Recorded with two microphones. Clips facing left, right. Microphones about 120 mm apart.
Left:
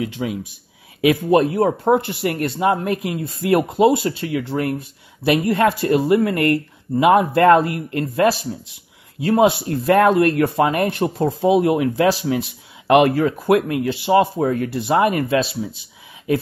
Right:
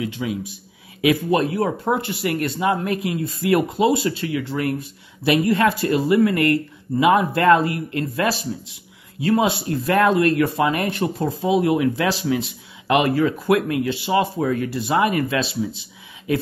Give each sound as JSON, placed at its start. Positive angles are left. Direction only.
{"t": 0.0, "sound": "speech", "side_deg": 50}
{"t": 9.4, "sound": "speech", "side_deg": 45}
{"t": 14.7, "sound": "speech", "side_deg": 50}